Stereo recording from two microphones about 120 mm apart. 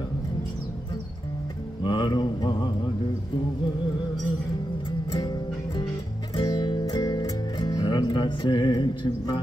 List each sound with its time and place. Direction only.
1.8 s mantra: 40° left (ahead or behind)
6.3 s music: 40° left (ahead or behind)